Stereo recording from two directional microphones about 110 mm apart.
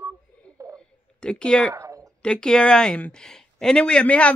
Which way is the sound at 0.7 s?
10° left (ahead or behind).